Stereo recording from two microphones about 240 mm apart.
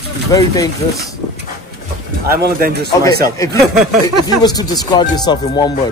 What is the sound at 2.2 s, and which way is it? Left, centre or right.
Speech, right.